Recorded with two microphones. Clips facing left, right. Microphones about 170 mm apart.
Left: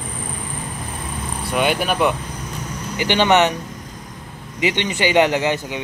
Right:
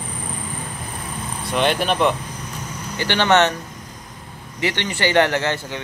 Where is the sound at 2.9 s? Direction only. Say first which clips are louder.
Left 1 dB; 15° left (ahead or behind).